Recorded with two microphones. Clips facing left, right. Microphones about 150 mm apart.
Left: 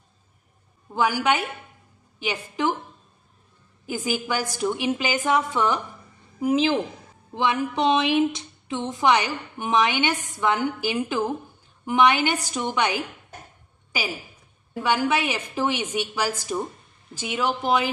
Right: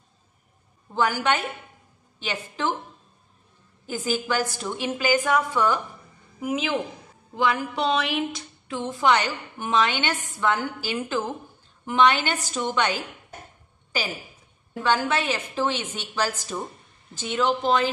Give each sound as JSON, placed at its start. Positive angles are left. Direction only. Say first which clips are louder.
{"t": 0.9, "sound": "a woman's voice", "louder": "left 1 dB", "side_deg": 10}
{"t": 3.8, "sound": "a woman's voice", "louder": "even", "side_deg": 10}
{"t": 6.4, "sound": "a woman's voice", "louder": "left 5 dB", "side_deg": 30}
{"t": 7.3, "sound": "a woman's voice", "louder": "left 1 dB", "side_deg": 20}